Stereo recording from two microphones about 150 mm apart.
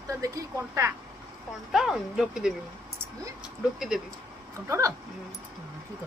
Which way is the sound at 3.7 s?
5° right (ahead or behind).